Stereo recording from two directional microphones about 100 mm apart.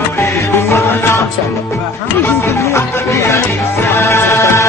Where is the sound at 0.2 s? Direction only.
30° left (ahead or behind).